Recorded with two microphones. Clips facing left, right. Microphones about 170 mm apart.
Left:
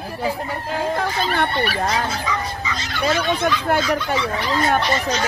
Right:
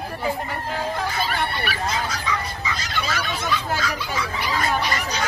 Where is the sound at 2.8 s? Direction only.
25° left (ahead or behind).